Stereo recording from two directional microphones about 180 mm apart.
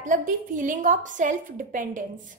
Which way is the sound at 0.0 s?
45° right (ahead or behind).